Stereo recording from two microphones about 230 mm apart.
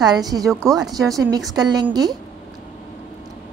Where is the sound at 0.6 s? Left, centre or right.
Centre.